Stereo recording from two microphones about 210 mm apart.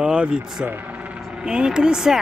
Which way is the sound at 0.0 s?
5° right (ahead or behind).